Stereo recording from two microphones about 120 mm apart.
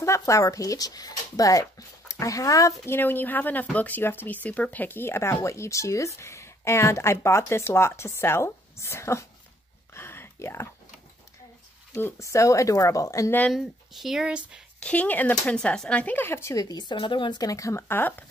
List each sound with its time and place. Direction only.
0.0 s speech: 25° left (ahead or behind)
9.9 s a sound: 20° left (ahead or behind)
11.9 s speech: 25° left (ahead or behind)
13.5 s speech: centre (ahead or behind)
14.8 s speech: 10° left (ahead or behind)